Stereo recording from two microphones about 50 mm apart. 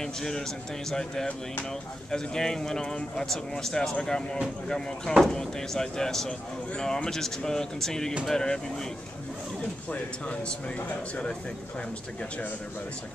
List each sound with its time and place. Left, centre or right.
0.0 s speech: centre
9.8 s speech: left